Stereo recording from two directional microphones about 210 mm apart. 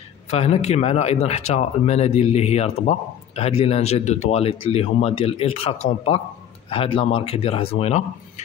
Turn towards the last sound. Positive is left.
turn(degrees=30)  # may be behind; listen again after turning